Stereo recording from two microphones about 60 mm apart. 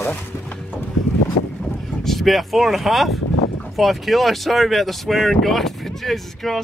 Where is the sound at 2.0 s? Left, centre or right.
Centre.